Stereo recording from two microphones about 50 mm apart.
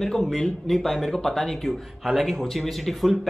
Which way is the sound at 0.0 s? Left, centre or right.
Centre.